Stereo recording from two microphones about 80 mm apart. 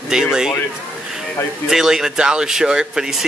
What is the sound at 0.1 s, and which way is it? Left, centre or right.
Speech, centre.